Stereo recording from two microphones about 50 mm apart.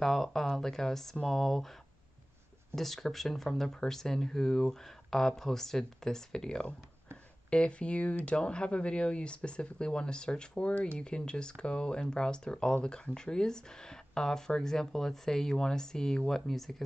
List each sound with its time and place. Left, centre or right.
0.0 s speech: centre
2.7 s speech: centre